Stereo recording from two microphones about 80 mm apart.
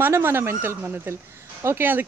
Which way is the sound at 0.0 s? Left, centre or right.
Right.